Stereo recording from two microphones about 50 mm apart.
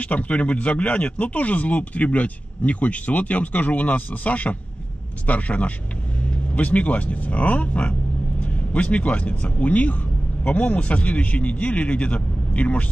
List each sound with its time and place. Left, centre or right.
0.0 s speech: left